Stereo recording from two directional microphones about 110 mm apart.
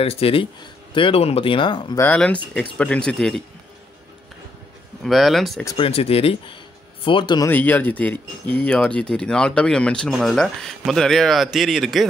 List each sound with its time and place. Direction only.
0.0 s speech: 65° left (ahead or behind); by 2.0 s 45° left (ahead or behind)
2.1 s speech: 10° left (ahead or behind)
5.0 s speech: centre (ahead or behind)
5.8 s speech: 65° left (ahead or behind)
7.4 s speech: 15° left (ahead or behind); by 12.1 s centre (ahead or behind)